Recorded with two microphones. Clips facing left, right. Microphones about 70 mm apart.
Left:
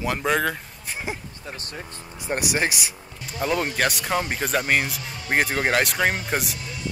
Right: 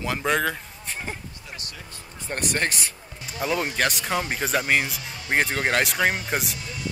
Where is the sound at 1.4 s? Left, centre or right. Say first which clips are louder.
Left 4 dB; left.